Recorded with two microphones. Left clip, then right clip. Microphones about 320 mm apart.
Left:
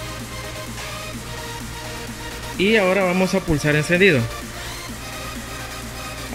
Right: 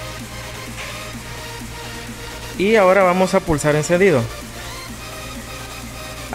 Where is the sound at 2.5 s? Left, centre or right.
Centre.